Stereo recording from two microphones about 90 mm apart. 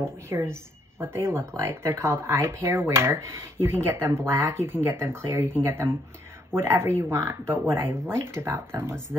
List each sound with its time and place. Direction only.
0.0 s speech: 30° right (ahead or behind)